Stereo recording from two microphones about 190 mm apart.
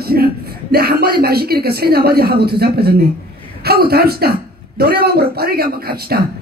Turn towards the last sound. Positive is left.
turn(degrees=-55)  # may be behind; listen again after turning